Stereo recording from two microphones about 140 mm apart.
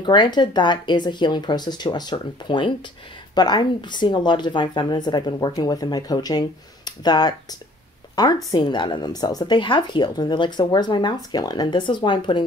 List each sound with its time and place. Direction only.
0.0 s a woman's voice: 30° left (ahead or behind)